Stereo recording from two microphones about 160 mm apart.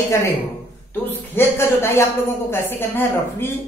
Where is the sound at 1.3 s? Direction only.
15° left (ahead or behind).